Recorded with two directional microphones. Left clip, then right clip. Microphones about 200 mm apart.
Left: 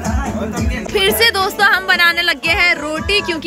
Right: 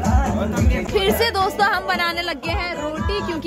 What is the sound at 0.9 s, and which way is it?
Music, 5° right (ahead or behind).